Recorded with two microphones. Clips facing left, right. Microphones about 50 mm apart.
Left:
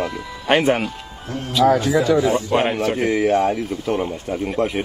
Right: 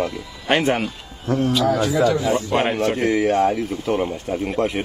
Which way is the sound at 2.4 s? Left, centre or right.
Centre.